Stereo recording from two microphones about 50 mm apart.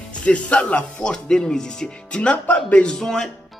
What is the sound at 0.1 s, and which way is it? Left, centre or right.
Speech, left.